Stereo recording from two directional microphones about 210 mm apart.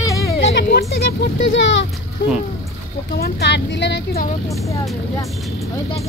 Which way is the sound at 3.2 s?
55° left (ahead or behind).